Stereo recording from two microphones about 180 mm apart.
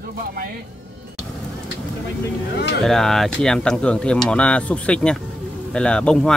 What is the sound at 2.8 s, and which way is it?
Speech, centre (ahead or behind).